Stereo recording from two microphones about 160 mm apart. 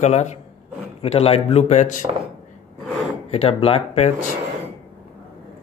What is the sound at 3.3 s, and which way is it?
Speech, 35° left (ahead or behind).